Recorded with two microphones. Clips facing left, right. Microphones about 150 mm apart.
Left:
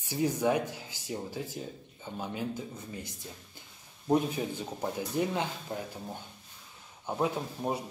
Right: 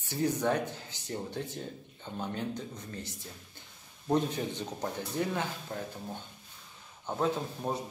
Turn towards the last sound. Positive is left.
turn(degrees=10)  # may be behind; listen again after turning